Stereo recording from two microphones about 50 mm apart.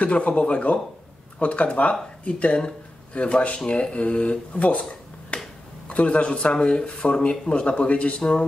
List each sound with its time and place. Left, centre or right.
0.0 s speech: left
5.3 s finger snapping: left
5.9 s speech: left